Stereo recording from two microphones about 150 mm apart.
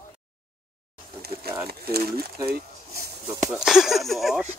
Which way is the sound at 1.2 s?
90° right.